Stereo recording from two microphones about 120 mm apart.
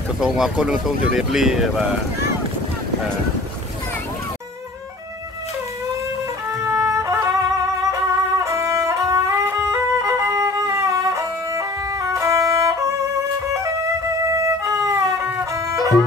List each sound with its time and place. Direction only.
0.2 s speech: 5° right (ahead or behind)
6.6 s music: 25° right (ahead or behind)
14.3 s music: 25° right (ahead or behind)